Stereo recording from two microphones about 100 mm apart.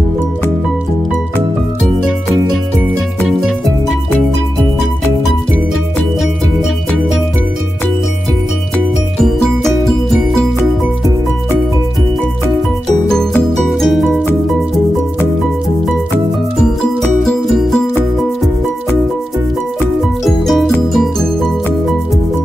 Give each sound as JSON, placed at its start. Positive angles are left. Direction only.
{"t": 3.3, "sound": "music", "side_deg": 0}
{"t": 9.2, "sound": "music", "side_deg": 0}
{"t": 13.1, "sound": "music", "side_deg": 5}
{"t": 17.2, "sound": "music", "side_deg": 5}
{"t": 20.2, "sound": "music", "side_deg": 0}